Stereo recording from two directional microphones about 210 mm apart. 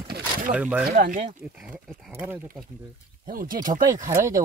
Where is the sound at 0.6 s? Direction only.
5° right (ahead or behind).